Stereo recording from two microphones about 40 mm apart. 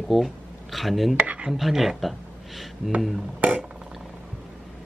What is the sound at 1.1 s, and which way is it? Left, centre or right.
Speech, right.